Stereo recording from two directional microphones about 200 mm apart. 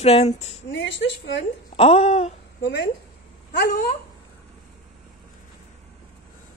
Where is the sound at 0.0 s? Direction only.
30° left (ahead or behind).